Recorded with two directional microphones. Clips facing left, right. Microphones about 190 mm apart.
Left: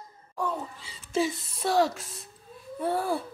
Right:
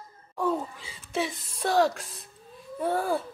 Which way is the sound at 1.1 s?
Centre (ahead or behind).